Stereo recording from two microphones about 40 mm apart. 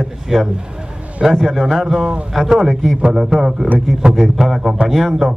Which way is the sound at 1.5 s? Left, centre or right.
Centre.